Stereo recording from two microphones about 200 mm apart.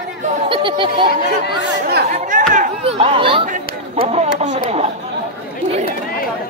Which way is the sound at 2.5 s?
35° right (ahead or behind).